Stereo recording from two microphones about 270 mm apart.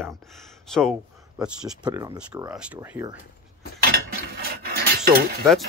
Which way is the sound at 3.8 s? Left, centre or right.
Right.